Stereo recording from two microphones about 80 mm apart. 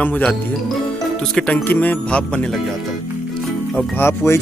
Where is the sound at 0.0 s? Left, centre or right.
Centre.